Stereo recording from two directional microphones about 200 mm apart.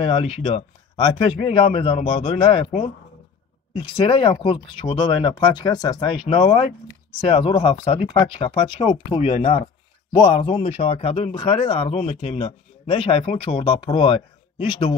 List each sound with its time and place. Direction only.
0.0 s speech: 30° left (ahead or behind)